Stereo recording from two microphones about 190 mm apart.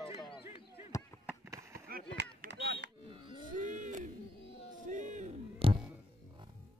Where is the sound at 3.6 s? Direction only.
40° right (ahead or behind).